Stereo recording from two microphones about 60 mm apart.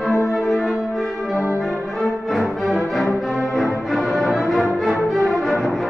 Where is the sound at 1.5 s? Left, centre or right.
Centre.